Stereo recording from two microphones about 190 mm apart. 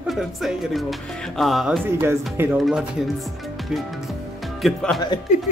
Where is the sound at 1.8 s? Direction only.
10° right (ahead or behind).